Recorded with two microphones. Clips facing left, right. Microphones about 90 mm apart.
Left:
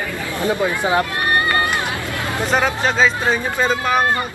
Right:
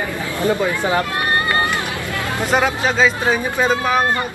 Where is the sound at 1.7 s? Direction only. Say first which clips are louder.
Even; 20° left (ahead or behind).